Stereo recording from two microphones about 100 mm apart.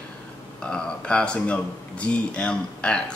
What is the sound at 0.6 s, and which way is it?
Speech, 10° left (ahead or behind).